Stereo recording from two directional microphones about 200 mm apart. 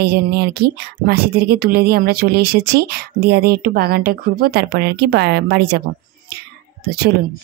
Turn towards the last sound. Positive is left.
turn(degrees=-55)  # may be behind; listen again after turning